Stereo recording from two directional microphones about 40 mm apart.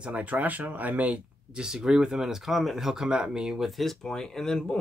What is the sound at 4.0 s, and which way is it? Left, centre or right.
Speech, centre.